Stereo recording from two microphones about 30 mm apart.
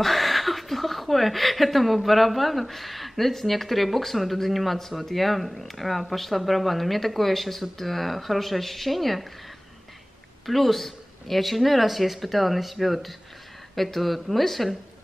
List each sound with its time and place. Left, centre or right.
0.0 s speech: centre
10.4 s speech: centre